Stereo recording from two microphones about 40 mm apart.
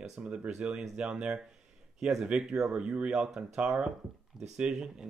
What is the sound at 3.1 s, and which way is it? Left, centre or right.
Speech, centre.